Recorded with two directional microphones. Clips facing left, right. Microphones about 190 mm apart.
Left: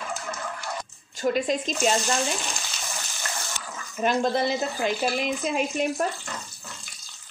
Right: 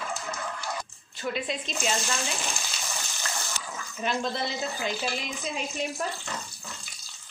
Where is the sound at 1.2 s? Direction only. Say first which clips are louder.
Left 7 dB; 45° left (ahead or behind).